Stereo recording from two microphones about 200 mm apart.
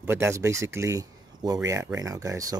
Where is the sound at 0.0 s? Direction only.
10° right (ahead or behind).